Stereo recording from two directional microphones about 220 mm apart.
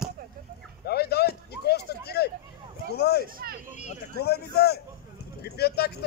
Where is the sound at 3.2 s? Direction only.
40° right (ahead or behind).